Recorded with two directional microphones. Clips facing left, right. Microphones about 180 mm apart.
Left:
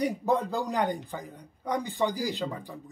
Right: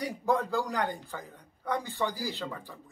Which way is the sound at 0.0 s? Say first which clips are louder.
Left 3 dB; 20° left (ahead or behind).